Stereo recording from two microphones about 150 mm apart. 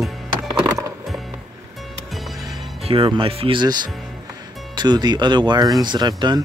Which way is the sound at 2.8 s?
35° right (ahead or behind).